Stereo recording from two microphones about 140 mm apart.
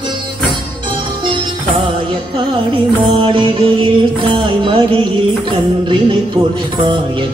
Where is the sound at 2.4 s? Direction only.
35° right (ahead or behind).